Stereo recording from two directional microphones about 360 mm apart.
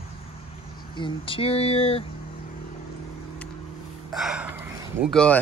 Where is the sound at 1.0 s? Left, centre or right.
Centre.